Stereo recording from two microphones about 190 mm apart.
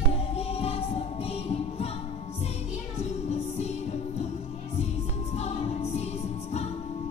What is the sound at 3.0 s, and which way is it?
Music, 35° left (ahead or behind).